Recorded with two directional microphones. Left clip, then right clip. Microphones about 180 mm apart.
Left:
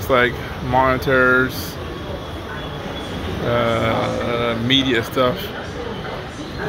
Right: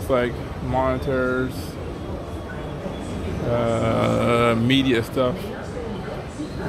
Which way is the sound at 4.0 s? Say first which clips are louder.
Right 1 dB; 30° right (ahead or behind).